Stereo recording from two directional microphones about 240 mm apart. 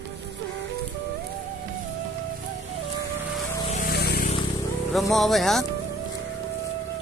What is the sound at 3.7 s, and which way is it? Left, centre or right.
Vehicle, left.